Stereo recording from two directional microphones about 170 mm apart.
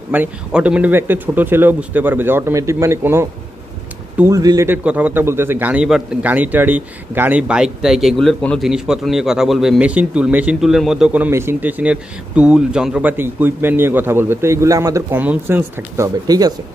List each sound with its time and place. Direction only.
0.1 s a man's voice: 10° right (ahead or behind)
4.8 s a man's voice: 10° right (ahead or behind)